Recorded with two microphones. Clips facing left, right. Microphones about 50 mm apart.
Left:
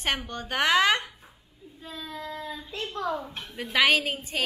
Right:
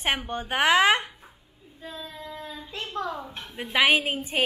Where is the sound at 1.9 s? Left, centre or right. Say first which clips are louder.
Left 2 dB; centre.